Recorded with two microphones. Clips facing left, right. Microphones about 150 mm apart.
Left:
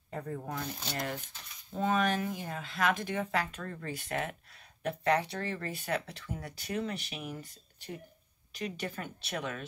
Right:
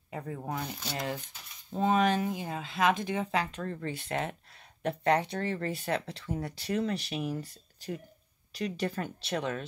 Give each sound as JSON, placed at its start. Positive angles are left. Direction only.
{"t": 0.1, "sound": "speech", "side_deg": -15}
{"t": 8.5, "sound": "speech", "side_deg": -35}